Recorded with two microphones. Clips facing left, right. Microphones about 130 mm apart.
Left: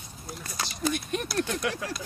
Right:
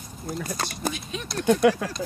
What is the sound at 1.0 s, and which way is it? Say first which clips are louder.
Speech: left 3 dB; 55° left (ahead or behind).